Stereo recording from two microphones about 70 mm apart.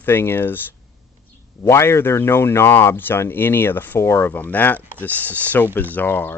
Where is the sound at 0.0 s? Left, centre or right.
Left.